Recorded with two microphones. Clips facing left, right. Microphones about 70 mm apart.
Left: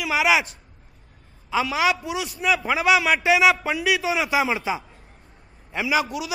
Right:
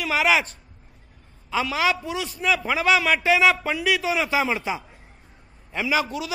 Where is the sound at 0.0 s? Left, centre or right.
Centre.